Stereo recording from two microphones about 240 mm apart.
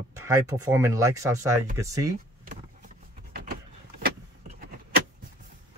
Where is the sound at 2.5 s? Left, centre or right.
Right.